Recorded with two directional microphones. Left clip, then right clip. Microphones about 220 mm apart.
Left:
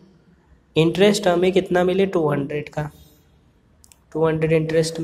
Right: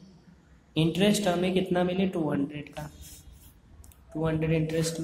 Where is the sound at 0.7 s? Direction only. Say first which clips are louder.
Left 10 dB; 20° left (ahead or behind).